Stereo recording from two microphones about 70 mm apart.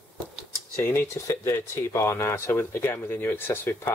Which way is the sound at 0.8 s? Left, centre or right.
Left.